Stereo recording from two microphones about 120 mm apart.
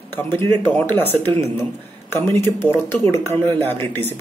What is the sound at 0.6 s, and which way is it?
Speech, 15° left (ahead or behind).